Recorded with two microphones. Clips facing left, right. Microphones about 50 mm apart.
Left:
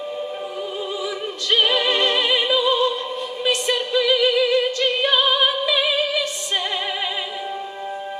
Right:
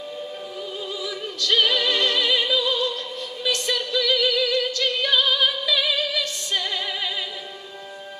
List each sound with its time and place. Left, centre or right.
1.0 s music: left
3.4 s a capella: left